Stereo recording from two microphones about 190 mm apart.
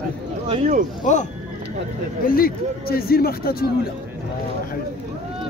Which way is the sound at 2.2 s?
50° left (ahead or behind).